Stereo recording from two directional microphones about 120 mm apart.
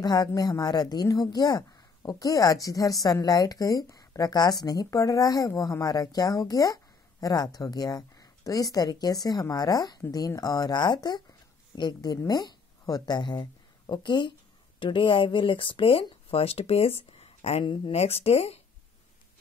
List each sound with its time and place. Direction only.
0.0 s a woman's voice: 35° left (ahead or behind); by 18.6 s 55° left (ahead or behind)